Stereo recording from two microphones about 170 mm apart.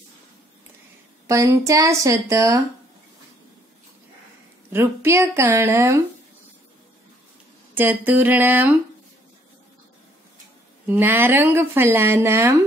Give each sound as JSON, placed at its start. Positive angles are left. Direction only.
{"t": 1.2, "sound": "speech", "side_deg": -15}
{"t": 4.7, "sound": "speech", "side_deg": -15}
{"t": 7.7, "sound": "speech", "side_deg": -10}
{"t": 10.9, "sound": "speech", "side_deg": -10}